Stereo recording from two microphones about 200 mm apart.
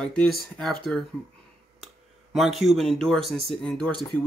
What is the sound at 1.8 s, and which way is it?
Speech, centre (ahead or behind).